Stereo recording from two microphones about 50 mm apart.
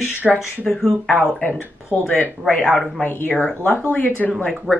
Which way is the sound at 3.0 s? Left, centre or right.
Left.